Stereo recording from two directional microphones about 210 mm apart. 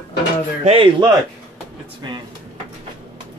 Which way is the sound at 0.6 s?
25° right (ahead or behind).